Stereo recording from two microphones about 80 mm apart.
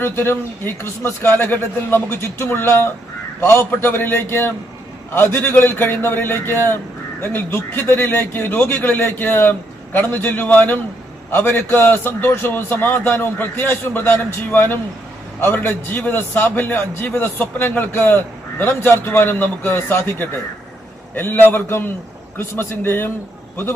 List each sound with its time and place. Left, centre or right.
0.0 s a man's voice: left